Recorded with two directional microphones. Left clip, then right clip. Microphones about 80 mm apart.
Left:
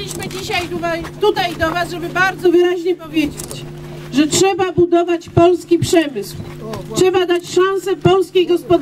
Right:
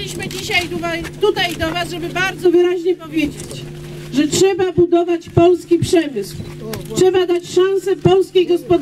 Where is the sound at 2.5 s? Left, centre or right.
Left.